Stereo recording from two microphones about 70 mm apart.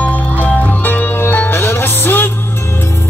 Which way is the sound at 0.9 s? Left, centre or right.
Left.